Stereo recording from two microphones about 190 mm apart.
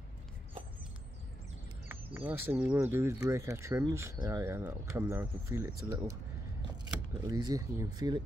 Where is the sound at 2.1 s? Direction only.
10° right (ahead or behind).